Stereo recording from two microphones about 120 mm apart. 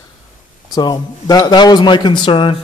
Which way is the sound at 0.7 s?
35° left (ahead or behind).